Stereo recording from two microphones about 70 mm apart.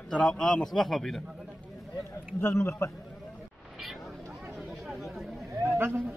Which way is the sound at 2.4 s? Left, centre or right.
Left.